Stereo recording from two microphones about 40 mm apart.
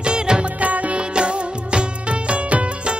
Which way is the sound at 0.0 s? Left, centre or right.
Right.